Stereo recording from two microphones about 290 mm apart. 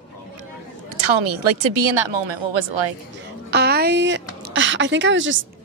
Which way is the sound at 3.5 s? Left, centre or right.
Right.